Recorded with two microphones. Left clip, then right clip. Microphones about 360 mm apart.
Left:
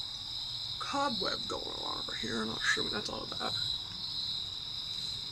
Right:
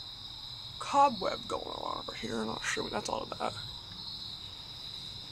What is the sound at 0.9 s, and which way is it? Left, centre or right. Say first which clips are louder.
Cricket: right 7 dB; centre.